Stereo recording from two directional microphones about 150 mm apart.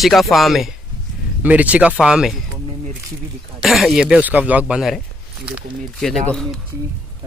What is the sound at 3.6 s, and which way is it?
Speech, centre (ahead or behind).